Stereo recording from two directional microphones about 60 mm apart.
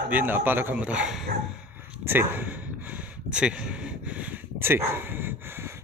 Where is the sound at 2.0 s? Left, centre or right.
Right.